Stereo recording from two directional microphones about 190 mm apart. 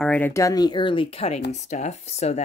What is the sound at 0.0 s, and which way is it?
Speech, 10° left (ahead or behind).